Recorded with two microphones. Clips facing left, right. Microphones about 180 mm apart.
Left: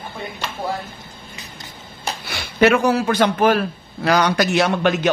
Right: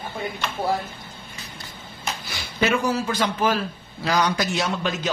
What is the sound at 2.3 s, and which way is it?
A man's voice, 65° left (ahead or behind).